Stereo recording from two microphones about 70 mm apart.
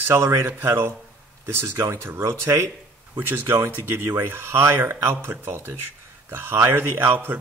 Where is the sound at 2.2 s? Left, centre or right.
Right.